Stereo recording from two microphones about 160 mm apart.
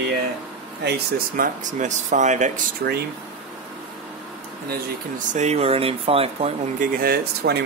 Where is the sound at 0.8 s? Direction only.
90° right.